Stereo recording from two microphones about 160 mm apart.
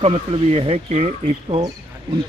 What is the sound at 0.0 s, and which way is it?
A man's voice, 35° right (ahead or behind).